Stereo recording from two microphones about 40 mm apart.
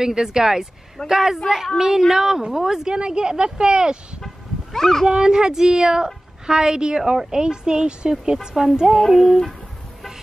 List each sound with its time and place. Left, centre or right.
0.0 s a woman's voice: centre
4.7 s speech: centre
5.0 s a woman's voice: centre
8.4 s a woman's voice: centre